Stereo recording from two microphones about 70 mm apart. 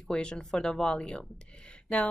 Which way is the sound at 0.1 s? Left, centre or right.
Centre.